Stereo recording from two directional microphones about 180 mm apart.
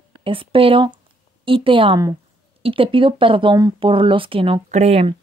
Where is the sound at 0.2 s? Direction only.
30° right (ahead or behind).